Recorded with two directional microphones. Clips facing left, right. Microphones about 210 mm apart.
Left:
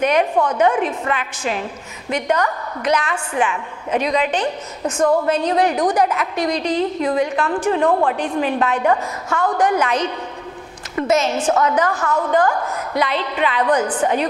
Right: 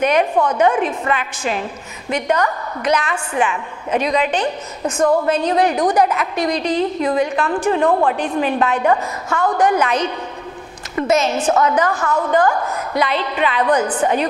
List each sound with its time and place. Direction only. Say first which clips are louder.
0.0 s a woman's voice: right 1 dB; 15° right (ahead or behind)
4.8 s a woman's voice: right 1 dB; 25° right (ahead or behind)
5.3 s a woman's voice: right 1 dB; 15° right (ahead or behind)
11.4 s a woman's voice: right 1 dB; 25° right (ahead or behind)